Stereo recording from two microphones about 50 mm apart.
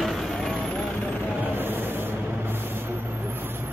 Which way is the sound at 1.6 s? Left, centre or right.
Right.